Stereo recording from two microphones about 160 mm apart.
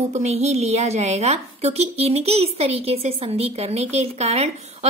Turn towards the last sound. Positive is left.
turn(degrees=-40)  # may be behind; listen again after turning